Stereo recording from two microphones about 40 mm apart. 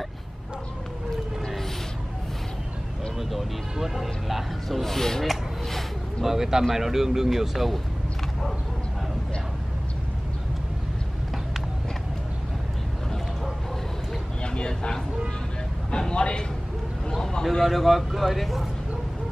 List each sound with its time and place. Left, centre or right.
3.2 s a sound: centre
3.7 s speech: centre
6.2 s speech: centre
14.4 s a man's voice: left
17.6 s speech: centre